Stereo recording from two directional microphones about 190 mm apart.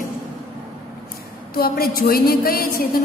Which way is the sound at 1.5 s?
50° left (ahead or behind).